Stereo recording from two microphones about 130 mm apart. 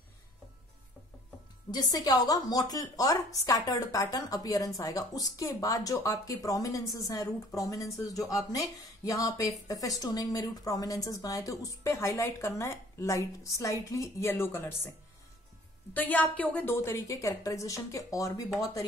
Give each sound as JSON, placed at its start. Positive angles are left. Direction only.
{"t": 1.7, "sound": "speech", "side_deg": 30}
{"t": 15.9, "sound": "speech", "side_deg": 15}